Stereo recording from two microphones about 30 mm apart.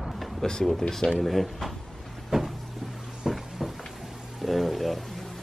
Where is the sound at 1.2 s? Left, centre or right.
Centre.